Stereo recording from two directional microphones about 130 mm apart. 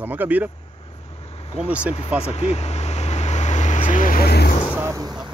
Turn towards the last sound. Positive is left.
turn(degrees=-30)  # may be behind; listen again after turning